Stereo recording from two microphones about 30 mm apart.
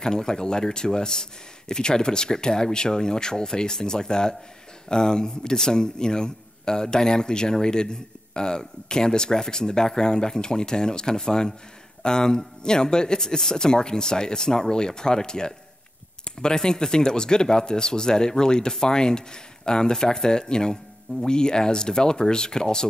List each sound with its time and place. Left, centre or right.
0.0 s a man's voice: left